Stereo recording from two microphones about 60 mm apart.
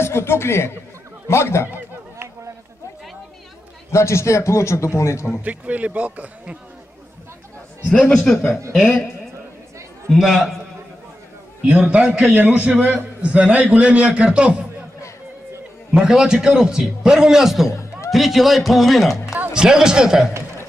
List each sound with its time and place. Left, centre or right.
0.0 s a man's voice: left
3.9 s a man's voice: left
5.4 s a man's voice: right
7.9 s a man's voice: left
8.7 s a man's voice: centre
10.1 s a man's voice: centre
11.6 s a man's voice: centre
15.9 s a man's voice: centre
17.6 s music: left
18.1 s a man's voice: centre
19.5 s a man's voice: centre